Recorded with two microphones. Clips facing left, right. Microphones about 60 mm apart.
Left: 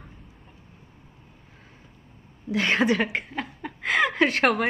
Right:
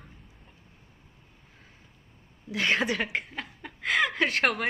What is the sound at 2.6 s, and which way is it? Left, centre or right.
A woman's voice, centre.